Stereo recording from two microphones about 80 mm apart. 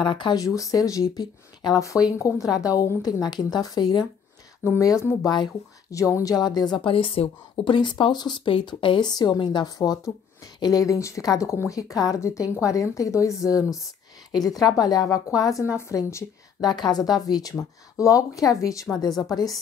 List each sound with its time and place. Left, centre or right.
0.0 s speech: left
0.6 s a woman's voice: left
2.1 s a woman's voice: left
4.7 s speech: left
9.8 s a woman's voice: left
11.9 s a woman's voice: left
16.6 s speech: left
17.9 s a woman's voice: left